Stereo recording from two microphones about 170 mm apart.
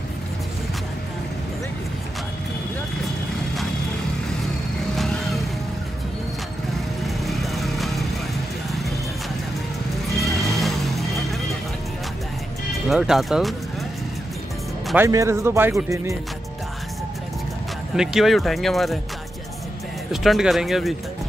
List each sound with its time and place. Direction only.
4.9 s vehicle: centre (ahead or behind)
7.2 s lawn mower: centre (ahead or behind)
10.2 s neigh: centre (ahead or behind)
12.8 s speech: centre (ahead or behind)
15.0 s a man's voice: 15° right (ahead or behind)
17.9 s speech: centre (ahead or behind)
20.1 s speech: centre (ahead or behind)